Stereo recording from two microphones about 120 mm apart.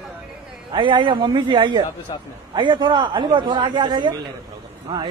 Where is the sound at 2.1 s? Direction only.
40° left (ahead or behind).